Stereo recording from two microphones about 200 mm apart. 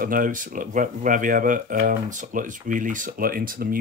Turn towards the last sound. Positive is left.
turn(degrees=-45)  # may be behind; listen again after turning